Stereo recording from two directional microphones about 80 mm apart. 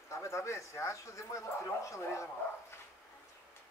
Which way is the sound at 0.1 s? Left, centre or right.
Left.